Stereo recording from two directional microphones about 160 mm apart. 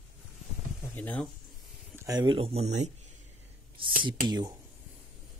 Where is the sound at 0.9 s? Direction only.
10° left (ahead or behind).